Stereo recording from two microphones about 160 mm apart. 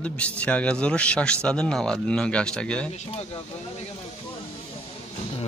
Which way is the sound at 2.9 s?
40° left (ahead or behind).